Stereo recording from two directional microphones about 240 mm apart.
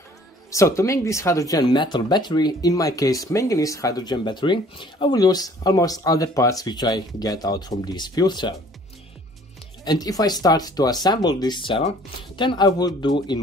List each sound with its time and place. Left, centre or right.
0.5 s speech: centre
9.8 s speech: centre